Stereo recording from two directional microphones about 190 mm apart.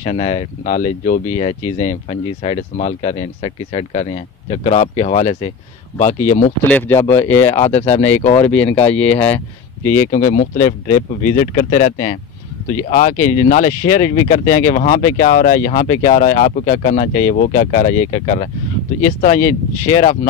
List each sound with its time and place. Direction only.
0.0 s speech: 35° left (ahead or behind)
6.7 s speech: 15° left (ahead or behind)
7.6 s speech: 35° left (ahead or behind)
8.8 s speech: 5° left (ahead or behind)
10.1 s speech: 45° left (ahead or behind)